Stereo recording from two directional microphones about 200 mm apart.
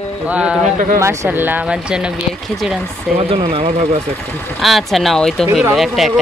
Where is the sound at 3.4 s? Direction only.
30° right (ahead or behind).